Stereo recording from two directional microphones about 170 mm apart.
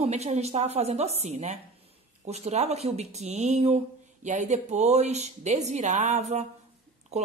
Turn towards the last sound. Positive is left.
turn(degrees=-40)  # may be behind; listen again after turning